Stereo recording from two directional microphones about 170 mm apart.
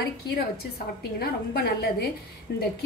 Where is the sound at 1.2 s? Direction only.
70° left (ahead or behind).